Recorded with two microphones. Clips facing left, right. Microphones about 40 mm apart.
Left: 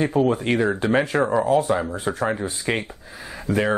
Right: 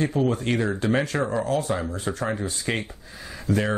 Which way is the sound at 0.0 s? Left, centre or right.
Centre.